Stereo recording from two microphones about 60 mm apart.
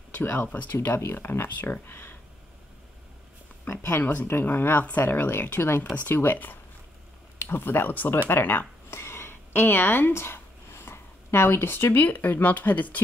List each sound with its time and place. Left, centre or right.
0.1 s speech: left
4.0 s speech: left
4.3 s speech: left